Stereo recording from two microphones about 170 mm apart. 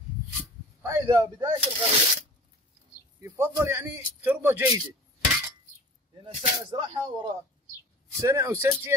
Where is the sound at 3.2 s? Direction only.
20° right (ahead or behind).